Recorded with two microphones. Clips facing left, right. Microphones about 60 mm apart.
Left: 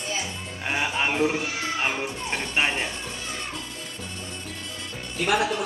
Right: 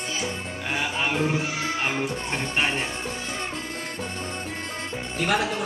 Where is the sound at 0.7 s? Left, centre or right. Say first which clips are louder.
Left 1 dB; centre.